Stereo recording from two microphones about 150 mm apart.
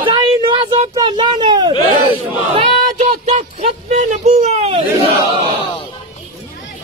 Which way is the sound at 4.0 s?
50° right (ahead or behind).